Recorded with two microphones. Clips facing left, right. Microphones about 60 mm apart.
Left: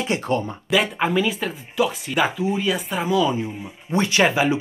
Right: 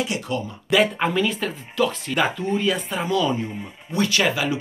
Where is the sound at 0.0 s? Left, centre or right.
Left.